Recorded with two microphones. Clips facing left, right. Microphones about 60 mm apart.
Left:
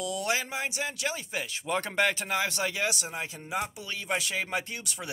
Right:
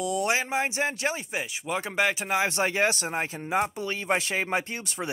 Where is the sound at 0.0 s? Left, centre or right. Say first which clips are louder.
Right 4 dB; right.